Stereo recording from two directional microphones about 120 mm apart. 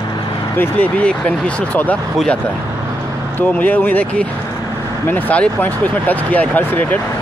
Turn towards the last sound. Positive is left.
turn(degrees=15)  # may be behind; listen again after turning